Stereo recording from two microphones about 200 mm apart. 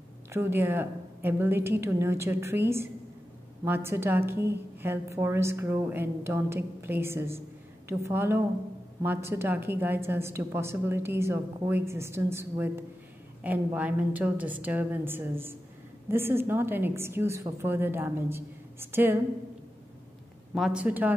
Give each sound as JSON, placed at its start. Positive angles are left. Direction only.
{"t": 0.3, "sound": "a woman's voice", "side_deg": -10}
{"t": 20.5, "sound": "a woman's voice", "side_deg": -5}